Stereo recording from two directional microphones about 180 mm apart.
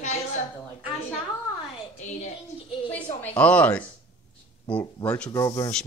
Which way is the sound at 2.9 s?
10° left (ahead or behind).